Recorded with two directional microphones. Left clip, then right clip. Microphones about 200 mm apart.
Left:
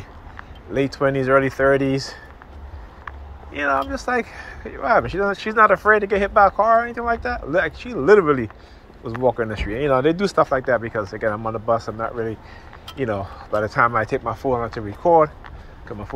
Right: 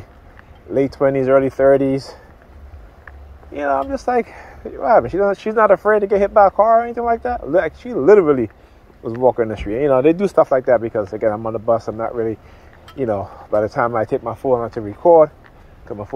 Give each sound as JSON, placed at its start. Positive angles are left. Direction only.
{"t": 1.0, "sound": "speech", "side_deg": -40}
{"t": 3.5, "sound": "speech", "side_deg": -45}
{"t": 5.2, "sound": "speech", "side_deg": -40}
{"t": 6.1, "sound": "speech", "side_deg": -25}
{"t": 6.4, "sound": "speech", "side_deg": -40}
{"t": 13.7, "sound": "speech", "side_deg": -40}